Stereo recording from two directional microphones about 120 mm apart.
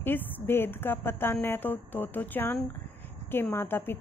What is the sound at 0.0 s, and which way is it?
A woman's voice, 15° left (ahead or behind).